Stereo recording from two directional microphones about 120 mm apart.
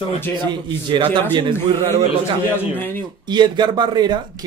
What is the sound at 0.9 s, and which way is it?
Speech, 40° right (ahead or behind).